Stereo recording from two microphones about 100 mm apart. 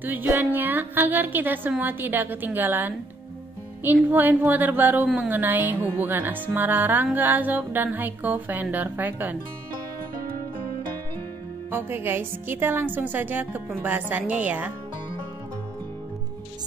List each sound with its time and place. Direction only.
0.0 s music: 20° right (ahead or behind)
11.7 s music: 20° right (ahead or behind)